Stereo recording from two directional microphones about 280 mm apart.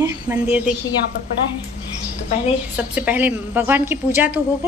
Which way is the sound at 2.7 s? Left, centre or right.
Centre.